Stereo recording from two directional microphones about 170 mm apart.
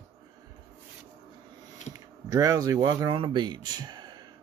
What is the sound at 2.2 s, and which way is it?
Speech, 20° right (ahead or behind).